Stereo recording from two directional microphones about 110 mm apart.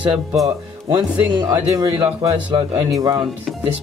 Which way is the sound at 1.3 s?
35° right (ahead or behind).